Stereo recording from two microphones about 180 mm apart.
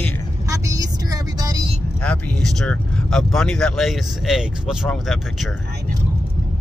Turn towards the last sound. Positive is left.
turn(degrees=0)  # may be behind; listen again after turning